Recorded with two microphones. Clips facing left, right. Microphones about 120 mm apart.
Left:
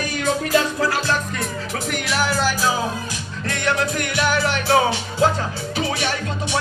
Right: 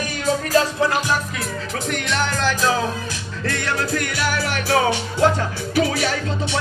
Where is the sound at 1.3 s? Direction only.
Centre (ahead or behind).